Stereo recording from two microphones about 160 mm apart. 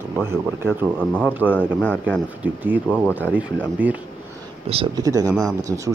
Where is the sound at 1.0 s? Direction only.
10° left (ahead or behind).